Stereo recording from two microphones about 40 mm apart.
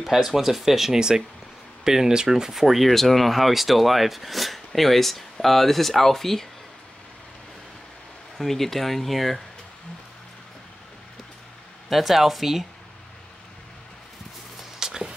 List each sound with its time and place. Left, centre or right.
0.0 s speech: centre
8.4 s speech: centre
11.9 s speech: centre
14.6 s a sound: centre